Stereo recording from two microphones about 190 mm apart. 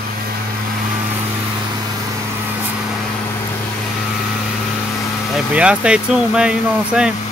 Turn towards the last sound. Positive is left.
turn(degrees=-5)  # may be behind; listen again after turning